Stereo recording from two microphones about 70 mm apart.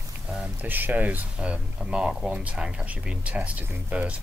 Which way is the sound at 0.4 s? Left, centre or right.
Right.